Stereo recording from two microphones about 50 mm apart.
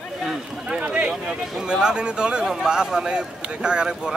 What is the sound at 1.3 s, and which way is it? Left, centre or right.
Speech, centre.